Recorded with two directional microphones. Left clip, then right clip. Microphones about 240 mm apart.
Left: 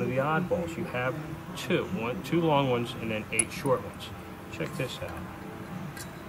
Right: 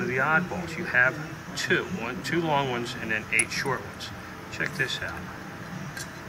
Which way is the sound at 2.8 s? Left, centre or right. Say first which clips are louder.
Right 4 dB; centre.